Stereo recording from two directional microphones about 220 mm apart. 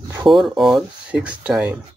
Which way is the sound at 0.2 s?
Centre (ahead or behind).